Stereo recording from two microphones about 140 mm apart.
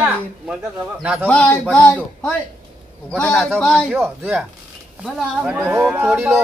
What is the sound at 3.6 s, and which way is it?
Speech, 5° left (ahead or behind).